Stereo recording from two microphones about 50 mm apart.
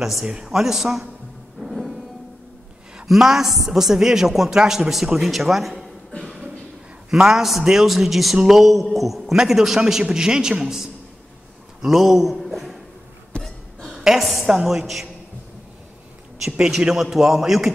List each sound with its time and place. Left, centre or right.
0.0 s a man's voice: centre
0.3 s a man's voice: centre
1.6 s music: centre
3.1 s a man's voice: centre
7.1 s a man's voice: centre
13.4 s a sound: centre
13.9 s a woman's voice: centre
16.4 s a man's voice: centre
16.7 s a man's voice: centre